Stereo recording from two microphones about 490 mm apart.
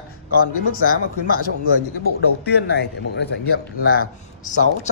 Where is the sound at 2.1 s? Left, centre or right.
Centre.